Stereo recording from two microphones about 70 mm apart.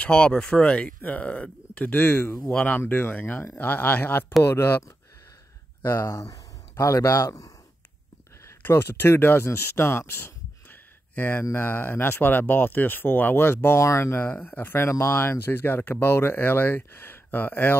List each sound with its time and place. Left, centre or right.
0.0 s speech: centre; by 2.5 s left
2.5 s speech: centre
5.9 s speech: left
8.6 s speech: left
13.7 s speech: left
14.2 s speech: left